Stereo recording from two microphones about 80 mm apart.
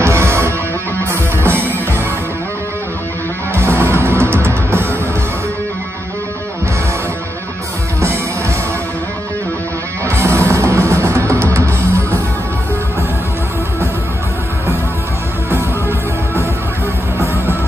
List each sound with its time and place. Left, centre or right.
0.0 s music: right
3.5 s music: right
10.0 s music: right